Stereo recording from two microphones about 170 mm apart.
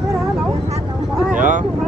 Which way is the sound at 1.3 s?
50° right (ahead or behind).